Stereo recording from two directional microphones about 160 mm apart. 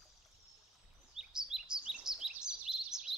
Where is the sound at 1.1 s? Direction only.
5° right (ahead or behind).